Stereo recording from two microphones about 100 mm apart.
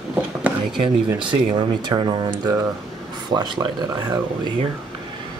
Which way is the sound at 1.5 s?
50° right (ahead or behind).